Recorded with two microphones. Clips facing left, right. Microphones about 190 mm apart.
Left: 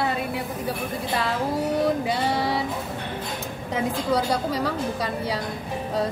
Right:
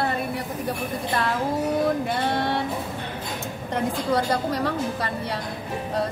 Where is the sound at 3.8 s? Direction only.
Centre (ahead or behind).